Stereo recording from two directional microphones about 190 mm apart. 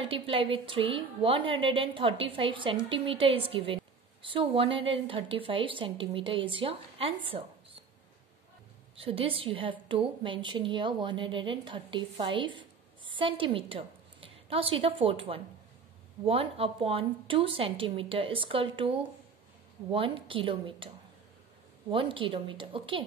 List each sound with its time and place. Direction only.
0.0 s a woman's voice: 30° right (ahead or behind)
8.9 s a woman's voice: 30° right (ahead or behind)
21.9 s a woman's voice: 25° right (ahead or behind)